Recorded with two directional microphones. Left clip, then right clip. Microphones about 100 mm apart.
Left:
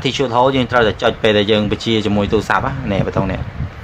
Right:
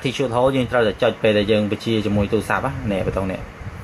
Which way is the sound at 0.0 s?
30° left (ahead or behind).